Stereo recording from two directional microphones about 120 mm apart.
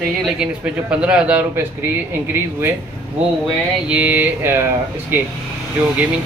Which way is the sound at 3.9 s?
15° right (ahead or behind).